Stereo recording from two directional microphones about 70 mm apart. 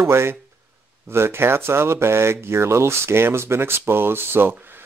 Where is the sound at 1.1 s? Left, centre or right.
Right.